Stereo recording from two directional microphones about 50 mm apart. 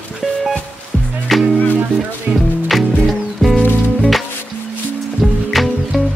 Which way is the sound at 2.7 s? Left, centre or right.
Centre.